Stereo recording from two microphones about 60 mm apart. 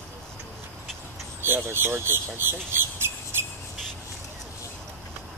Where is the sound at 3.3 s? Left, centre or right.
Right.